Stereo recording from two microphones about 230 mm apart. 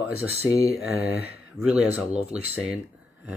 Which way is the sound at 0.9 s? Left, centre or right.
Left.